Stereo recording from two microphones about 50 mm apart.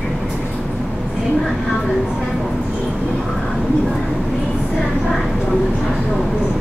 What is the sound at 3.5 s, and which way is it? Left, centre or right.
A woman's voice, centre.